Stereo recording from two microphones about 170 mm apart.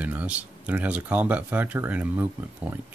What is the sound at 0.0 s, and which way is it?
Speech, 10° right (ahead or behind).